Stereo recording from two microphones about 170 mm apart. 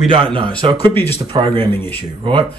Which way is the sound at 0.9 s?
15° left (ahead or behind).